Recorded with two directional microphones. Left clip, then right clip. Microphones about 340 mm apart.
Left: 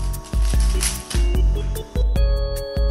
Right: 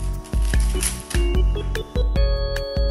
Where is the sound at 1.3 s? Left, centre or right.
Centre.